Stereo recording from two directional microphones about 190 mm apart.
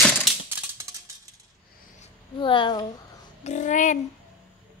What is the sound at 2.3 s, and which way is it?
Speech, 25° left (ahead or behind).